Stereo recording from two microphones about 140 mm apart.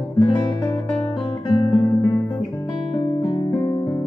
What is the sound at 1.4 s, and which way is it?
Guitar, 40° left (ahead or behind).